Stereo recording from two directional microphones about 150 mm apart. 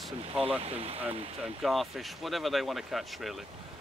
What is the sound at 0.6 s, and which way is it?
Speech, 40° right (ahead or behind).